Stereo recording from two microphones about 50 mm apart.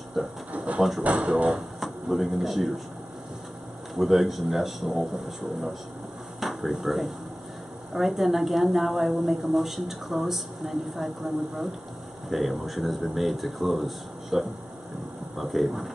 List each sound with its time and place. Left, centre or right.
0.2 s a woman's voice: centre
1.0 s speech: right
1.8 s speech: centre
3.9 s a woman's voice: centre
6.4 s a woman's voice: centre
12.3 s a woman's voice: centre